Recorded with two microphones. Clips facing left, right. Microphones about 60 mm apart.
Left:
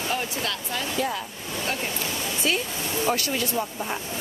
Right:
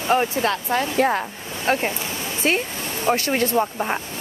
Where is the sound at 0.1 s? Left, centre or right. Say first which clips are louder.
Right 12 dB; right.